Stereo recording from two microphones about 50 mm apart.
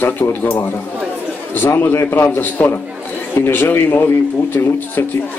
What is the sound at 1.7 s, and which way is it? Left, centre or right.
A man's voice, left.